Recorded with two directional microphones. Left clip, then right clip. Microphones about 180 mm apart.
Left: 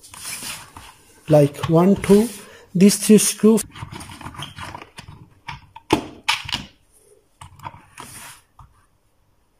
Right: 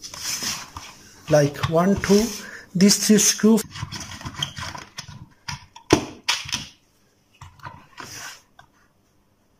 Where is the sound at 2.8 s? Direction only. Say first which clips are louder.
Left 3 dB; 15° left (ahead or behind).